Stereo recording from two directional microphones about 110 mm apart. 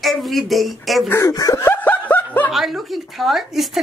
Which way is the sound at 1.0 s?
25° left (ahead or behind).